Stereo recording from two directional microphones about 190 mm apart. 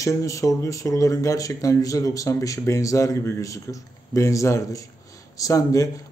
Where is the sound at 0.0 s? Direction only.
15° left (ahead or behind).